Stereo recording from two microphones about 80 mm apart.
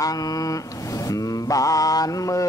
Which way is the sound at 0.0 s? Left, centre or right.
Left.